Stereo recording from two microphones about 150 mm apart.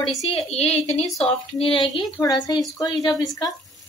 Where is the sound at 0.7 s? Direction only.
45° left (ahead or behind); by 3.1 s 25° left (ahead or behind).